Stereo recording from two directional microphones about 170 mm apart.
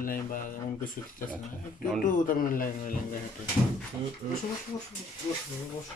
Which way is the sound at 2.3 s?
55° left (ahead or behind).